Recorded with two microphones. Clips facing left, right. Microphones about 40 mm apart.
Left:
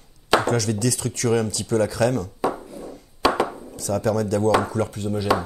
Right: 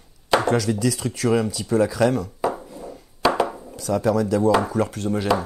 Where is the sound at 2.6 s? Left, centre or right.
Centre.